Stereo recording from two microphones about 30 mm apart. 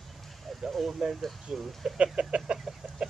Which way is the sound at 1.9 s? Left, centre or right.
Right.